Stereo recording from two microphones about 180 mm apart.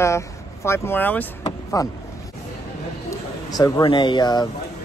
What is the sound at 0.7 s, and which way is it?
Speech, 10° left (ahead or behind).